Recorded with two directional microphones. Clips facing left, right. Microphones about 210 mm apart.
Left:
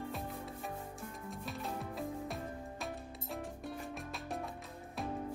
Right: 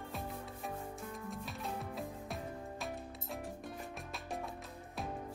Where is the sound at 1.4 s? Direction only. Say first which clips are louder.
Left 5 dB; centre (ahead or behind).